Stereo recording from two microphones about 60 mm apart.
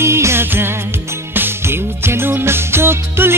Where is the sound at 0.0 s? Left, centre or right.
Right.